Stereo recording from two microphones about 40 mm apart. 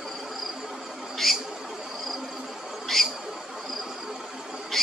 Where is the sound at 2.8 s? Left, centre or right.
Centre.